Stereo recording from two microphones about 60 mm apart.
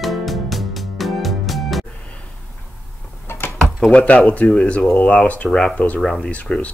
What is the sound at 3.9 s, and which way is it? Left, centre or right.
Speech, centre.